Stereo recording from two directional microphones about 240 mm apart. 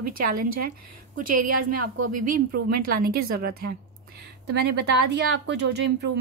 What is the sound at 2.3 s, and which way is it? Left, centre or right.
Speech, right.